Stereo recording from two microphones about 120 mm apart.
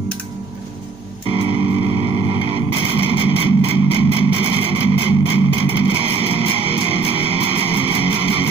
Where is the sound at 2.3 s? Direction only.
50° right (ahead or behind).